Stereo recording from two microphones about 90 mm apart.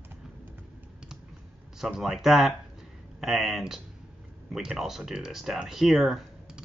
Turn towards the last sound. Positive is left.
turn(degrees=-5)  # may be behind; listen again after turning